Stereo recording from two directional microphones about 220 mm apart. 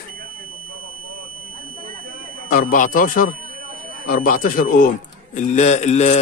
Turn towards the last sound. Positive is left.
turn(degrees=30)  # may be behind; listen again after turning